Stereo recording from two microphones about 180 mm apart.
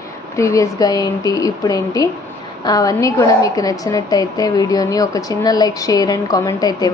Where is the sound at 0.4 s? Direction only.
15° left (ahead or behind).